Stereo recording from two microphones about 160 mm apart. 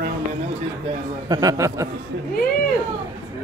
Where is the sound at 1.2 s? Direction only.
25° right (ahead or behind).